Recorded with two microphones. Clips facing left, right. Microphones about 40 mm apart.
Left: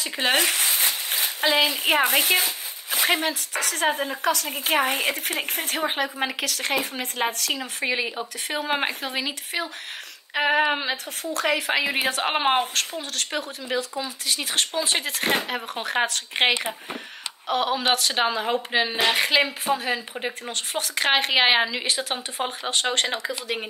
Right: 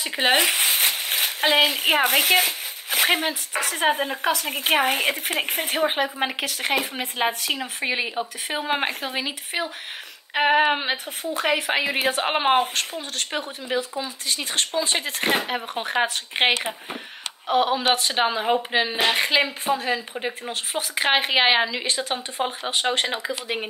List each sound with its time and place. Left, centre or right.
0.0 s speech: right
0.8 s a sound: right
1.7 s speech: right
2.0 s speech: right
3.3 s speech: centre
4.5 s a woman's voice: right
5.3 s speech: right
5.7 s speech: centre
7.6 s speech: centre
11.6 s a woman's voice: centre
14.2 s a woman's voice: centre
16.1 s a woman's voice: centre